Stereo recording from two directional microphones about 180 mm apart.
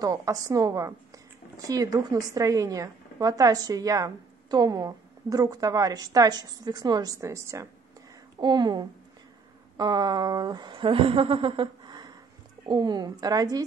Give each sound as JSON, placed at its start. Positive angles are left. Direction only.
{"t": 0.0, "sound": "a woman's voice", "side_deg": -20}